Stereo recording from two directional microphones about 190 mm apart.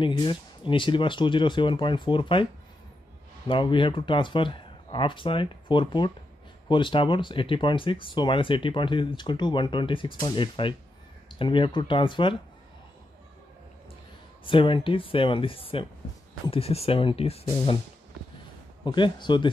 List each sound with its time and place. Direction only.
0.0 s speech: 25° left (ahead or behind)
3.4 s speech: 25° left (ahead or behind)
14.4 s speech: 25° left (ahead or behind)
18.9 s speech: 25° left (ahead or behind)